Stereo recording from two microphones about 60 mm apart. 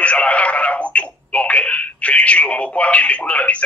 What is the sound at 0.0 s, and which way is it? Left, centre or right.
Speech, left.